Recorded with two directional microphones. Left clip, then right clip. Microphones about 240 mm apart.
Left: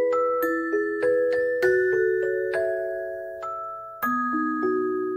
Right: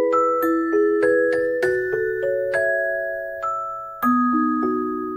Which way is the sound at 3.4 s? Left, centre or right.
Left.